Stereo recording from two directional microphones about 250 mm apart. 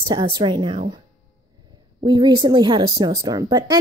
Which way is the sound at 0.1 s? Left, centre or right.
Centre.